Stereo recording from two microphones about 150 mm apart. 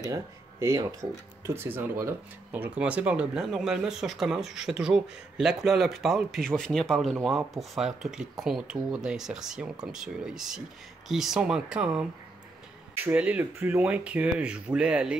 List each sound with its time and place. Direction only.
0.1 s speech: 20° right (ahead or behind)